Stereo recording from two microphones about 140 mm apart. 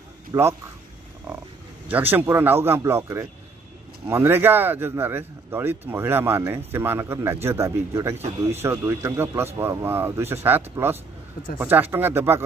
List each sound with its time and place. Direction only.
0.3 s speech: 20° right (ahead or behind)
1.9 s speech: 15° right (ahead or behind)
8.2 s speech: 50° right (ahead or behind)
8.6 s a man's voice: 20° right (ahead or behind)